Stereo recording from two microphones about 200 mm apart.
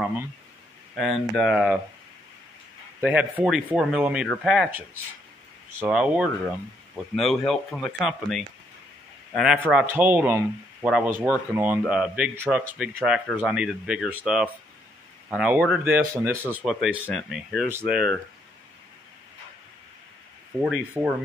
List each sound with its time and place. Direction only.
0.9 s speech: centre (ahead or behind)
3.0 s speech: 10° right (ahead or behind)
20.6 s speech: 5° right (ahead or behind)